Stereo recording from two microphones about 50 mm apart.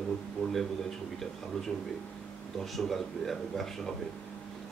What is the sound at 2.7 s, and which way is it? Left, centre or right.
Speech, centre.